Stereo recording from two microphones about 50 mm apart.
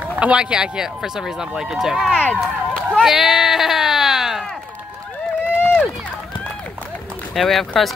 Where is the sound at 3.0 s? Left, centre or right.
Centre.